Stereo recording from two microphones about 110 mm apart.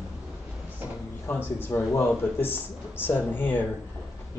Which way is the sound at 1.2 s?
20° left (ahead or behind).